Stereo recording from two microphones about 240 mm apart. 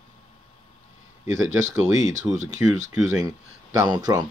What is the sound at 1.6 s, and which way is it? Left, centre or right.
Speech, right.